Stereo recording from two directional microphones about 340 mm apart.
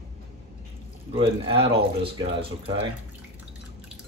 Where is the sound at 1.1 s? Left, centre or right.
Centre.